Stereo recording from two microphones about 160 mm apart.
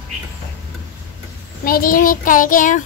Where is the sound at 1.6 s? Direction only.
65° left (ahead or behind).